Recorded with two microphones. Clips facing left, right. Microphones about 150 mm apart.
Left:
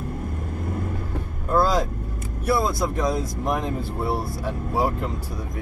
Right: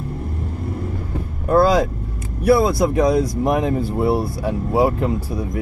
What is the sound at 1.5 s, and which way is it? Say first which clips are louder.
Speech: right 6 dB; 65° right (ahead or behind).